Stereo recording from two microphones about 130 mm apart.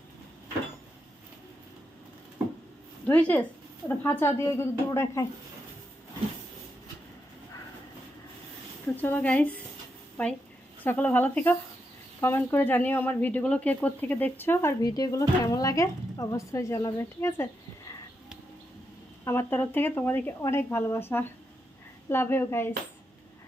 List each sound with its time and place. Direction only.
3.1 s a woman's voice: 10° left (ahead or behind)
8.9 s a woman's voice: 15° left (ahead or behind)
19.2 s a woman's voice: 15° left (ahead or behind)
22.1 s speech: 20° left (ahead or behind)